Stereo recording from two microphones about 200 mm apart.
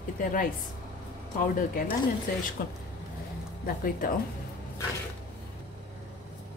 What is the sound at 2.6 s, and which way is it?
A woman's voice, 45° left (ahead or behind).